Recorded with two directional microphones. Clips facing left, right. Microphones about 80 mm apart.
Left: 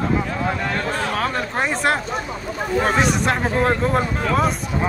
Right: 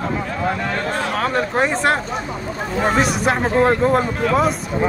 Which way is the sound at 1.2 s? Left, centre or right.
Centre.